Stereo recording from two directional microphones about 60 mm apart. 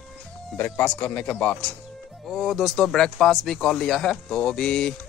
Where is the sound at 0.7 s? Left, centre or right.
Left.